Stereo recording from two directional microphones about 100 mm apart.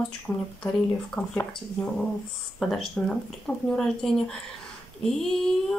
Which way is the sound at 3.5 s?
15° left (ahead or behind).